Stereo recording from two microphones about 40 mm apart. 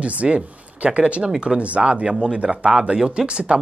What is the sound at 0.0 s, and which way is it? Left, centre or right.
Speech, right.